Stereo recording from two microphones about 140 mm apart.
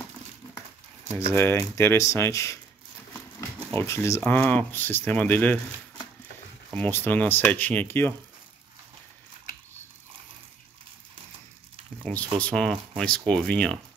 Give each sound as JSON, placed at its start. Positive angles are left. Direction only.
{"t": 1.3, "sound": "speech", "side_deg": 15}
{"t": 3.7, "sound": "speech", "side_deg": 20}
{"t": 4.2, "sound": "speech", "side_deg": 10}
{"t": 6.8, "sound": "speech", "side_deg": 15}
{"t": 12.0, "sound": "speech", "side_deg": 10}